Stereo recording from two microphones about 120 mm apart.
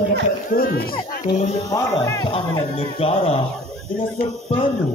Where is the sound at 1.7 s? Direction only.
25° left (ahead or behind).